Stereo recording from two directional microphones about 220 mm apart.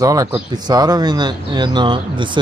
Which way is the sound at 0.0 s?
15° right (ahead or behind).